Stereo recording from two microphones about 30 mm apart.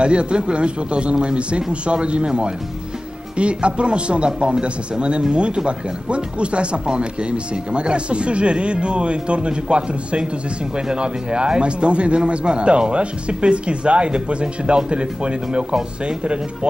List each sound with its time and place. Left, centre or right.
0.0 s a man's voice: right